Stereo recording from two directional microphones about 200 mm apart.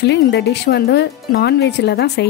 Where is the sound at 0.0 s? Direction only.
60° left (ahead or behind).